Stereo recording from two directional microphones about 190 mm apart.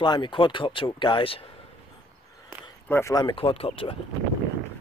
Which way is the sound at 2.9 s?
15° left (ahead or behind).